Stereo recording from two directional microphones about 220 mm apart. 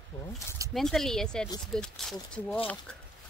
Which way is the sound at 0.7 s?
Centre (ahead or behind).